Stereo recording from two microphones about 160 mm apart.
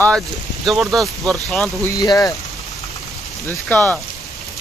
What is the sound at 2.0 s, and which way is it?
Speech, 25° left (ahead or behind).